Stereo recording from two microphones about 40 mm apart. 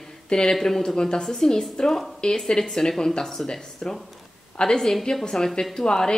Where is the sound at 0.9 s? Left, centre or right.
Left.